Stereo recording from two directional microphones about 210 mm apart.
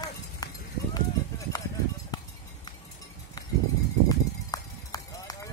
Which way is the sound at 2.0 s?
20° left (ahead or behind).